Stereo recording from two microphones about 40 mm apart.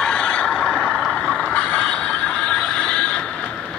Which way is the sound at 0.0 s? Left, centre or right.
Left.